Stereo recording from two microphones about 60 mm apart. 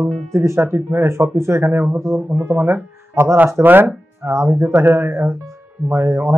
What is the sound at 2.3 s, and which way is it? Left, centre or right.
Speech, right.